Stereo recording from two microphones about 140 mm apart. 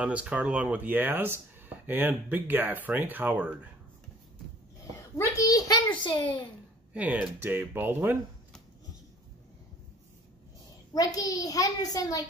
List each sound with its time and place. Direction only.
0.0 s speech: 10° right (ahead or behind)
5.1 s a sound: 25° left (ahead or behind)
6.0 s a child's voice: 35° left (ahead or behind)
6.9 s speech: 10° right (ahead or behind)
10.9 s a child's voice: 25° left (ahead or behind)